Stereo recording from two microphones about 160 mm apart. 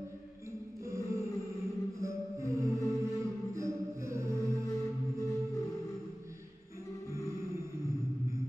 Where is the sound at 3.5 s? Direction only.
20° right (ahead or behind).